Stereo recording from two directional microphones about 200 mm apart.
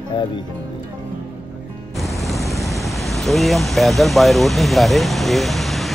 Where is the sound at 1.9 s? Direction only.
Centre (ahead or behind).